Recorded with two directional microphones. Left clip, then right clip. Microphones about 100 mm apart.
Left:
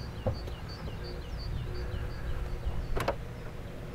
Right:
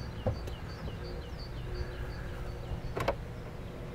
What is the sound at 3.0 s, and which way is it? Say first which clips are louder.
Vehicle: even; 15° left (ahead or behind).